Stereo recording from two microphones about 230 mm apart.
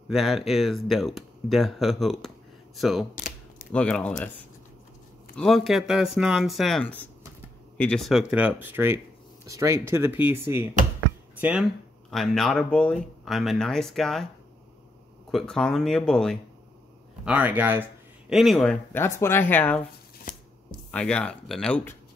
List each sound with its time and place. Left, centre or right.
0.1 s speech: centre
3.2 s typing: left
3.7 s speech: centre
5.3 s speech: centre
12.1 s speech: centre
15.3 s speech: centre
20.3 s shuffling cards: left
20.9 s speech: centre